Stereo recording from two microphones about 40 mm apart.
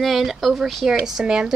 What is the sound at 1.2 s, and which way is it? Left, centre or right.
Speech, right.